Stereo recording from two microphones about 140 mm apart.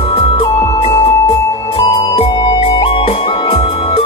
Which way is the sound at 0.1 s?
40° left (ahead or behind).